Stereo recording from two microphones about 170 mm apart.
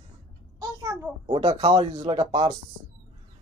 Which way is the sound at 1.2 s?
35° right (ahead or behind).